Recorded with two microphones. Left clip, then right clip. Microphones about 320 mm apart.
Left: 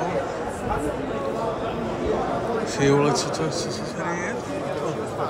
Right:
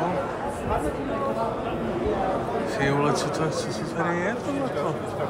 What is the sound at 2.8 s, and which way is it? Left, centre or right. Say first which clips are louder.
Speech: left 4 dB; centre.